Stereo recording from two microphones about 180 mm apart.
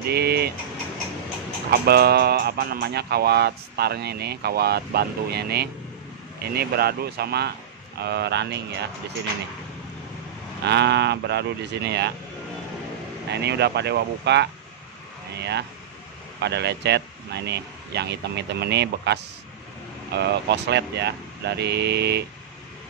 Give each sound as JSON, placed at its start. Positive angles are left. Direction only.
{"t": 0.0, "sound": "vehicle", "side_deg": -65}
{"t": 1.7, "sound": "speech", "side_deg": -60}
{"t": 10.6, "sound": "speech", "side_deg": -70}
{"t": 13.3, "sound": "speech", "side_deg": -65}